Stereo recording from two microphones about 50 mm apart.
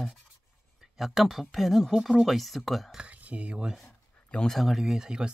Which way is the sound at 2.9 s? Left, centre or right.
Right.